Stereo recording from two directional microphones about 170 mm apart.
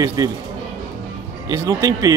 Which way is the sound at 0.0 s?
20° right (ahead or behind).